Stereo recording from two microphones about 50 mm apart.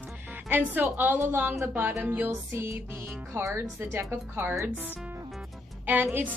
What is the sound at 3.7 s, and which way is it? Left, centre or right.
Speech, right.